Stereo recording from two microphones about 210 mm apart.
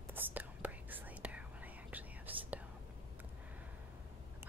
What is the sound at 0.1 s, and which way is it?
Whispering, 10° right (ahead or behind).